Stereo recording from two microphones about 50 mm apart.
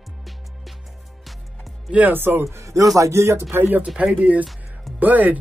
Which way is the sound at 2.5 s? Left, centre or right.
Right.